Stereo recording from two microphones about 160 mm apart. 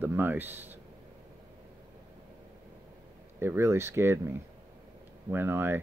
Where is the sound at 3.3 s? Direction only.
15° right (ahead or behind).